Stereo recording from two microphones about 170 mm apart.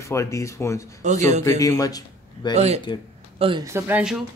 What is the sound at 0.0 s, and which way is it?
A man's voice, 15° left (ahead or behind).